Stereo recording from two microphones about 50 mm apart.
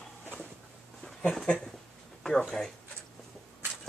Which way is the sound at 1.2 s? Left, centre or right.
Centre.